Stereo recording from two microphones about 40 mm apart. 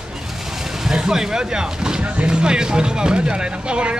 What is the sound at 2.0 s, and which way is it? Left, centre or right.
Speech, right.